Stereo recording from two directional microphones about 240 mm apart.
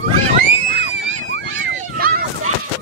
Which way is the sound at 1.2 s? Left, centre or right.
Right.